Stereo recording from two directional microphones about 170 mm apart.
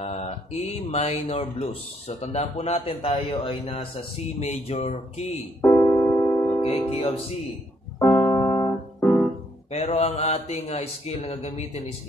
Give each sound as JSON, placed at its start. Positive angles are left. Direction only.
{"t": 0.0, "sound": "speech", "side_deg": 40}
{"t": 5.6, "sound": "keyboard", "side_deg": 15}
{"t": 6.6, "sound": "speech", "side_deg": 35}
{"t": 8.0, "sound": "keyboard", "side_deg": 10}
{"t": 9.0, "sound": "piano", "side_deg": 5}
{"t": 9.7, "sound": "speech", "side_deg": 35}